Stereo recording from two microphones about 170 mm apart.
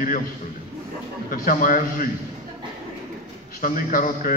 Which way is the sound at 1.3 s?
55° left (ahead or behind).